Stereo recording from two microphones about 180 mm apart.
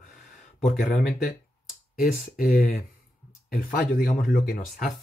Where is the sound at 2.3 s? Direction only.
55° left (ahead or behind).